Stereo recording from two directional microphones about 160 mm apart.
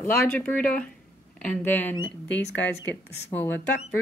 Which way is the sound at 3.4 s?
10° left (ahead or behind).